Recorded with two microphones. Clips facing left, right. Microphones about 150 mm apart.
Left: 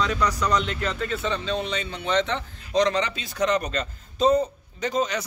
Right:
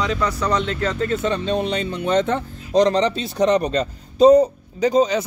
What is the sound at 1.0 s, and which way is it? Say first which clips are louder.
Speech: right 6 dB; 45° right (ahead or behind).